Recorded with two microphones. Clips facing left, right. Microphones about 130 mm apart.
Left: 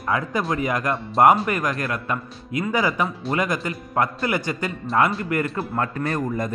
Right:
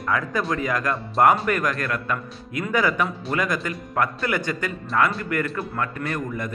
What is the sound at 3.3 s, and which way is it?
A man's voice, 25° left (ahead or behind).